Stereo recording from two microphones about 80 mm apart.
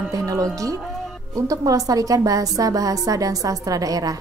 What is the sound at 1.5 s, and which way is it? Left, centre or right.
A woman's voice, right.